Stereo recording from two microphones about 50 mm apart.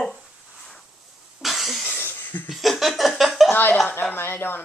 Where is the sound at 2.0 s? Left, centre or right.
Left.